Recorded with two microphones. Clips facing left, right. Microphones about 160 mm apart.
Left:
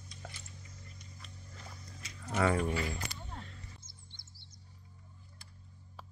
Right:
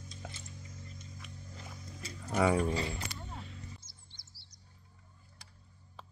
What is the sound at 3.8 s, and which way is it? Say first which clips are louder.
Music: left 3 dB; 50° left (ahead or behind).